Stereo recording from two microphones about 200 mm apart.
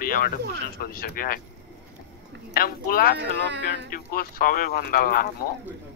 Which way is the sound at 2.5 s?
45° left (ahead or behind).